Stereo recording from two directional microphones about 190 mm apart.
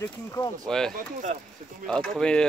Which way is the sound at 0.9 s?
45° right (ahead or behind).